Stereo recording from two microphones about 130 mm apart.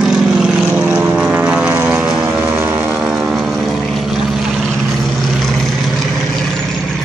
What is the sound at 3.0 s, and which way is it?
Vehicle, centre (ahead or behind).